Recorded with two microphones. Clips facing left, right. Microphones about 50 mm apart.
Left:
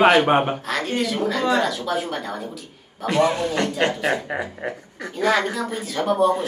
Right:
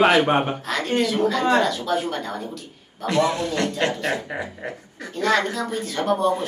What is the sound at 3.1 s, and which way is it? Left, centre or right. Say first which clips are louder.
Speech: left 1 dB; centre.